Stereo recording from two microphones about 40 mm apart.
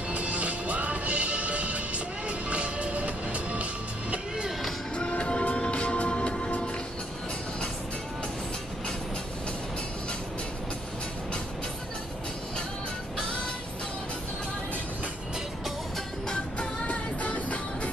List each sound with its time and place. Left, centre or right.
0.1 s music: right
4.9 s music: left
16.5 s music: left